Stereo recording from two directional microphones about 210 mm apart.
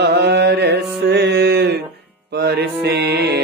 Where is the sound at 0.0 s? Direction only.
55° right (ahead or behind).